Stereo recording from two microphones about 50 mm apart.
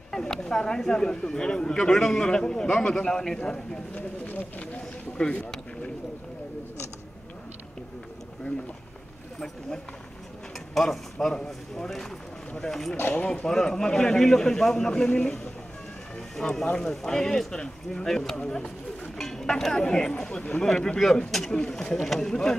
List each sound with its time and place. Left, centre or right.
0.1 s speech: centre
3.9 s speech: left
4.7 s speech: left
10.7 s speech: centre
13.0 s speech: left
13.3 s speech: centre
16.3 s speech: centre